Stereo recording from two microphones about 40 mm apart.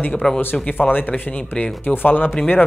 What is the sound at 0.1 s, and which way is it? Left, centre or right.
Speech, centre.